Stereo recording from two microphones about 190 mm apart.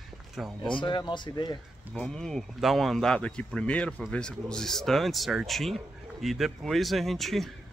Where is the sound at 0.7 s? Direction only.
25° left (ahead or behind).